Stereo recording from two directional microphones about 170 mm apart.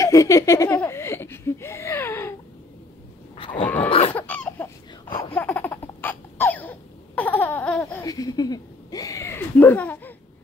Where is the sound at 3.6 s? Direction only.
10° left (ahead or behind).